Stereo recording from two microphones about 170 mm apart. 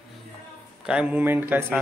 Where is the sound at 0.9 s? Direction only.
5° right (ahead or behind).